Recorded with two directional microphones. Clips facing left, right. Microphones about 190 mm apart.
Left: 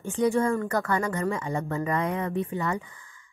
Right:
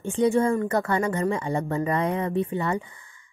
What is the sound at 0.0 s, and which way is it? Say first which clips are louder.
Speech: right 3 dB; 25° right (ahead or behind).